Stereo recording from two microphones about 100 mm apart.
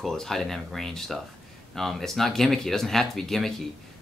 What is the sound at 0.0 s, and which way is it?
Speech, 5° left (ahead or behind).